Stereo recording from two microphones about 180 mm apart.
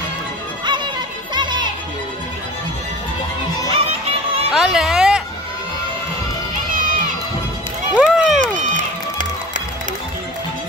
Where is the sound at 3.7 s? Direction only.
35° right (ahead or behind).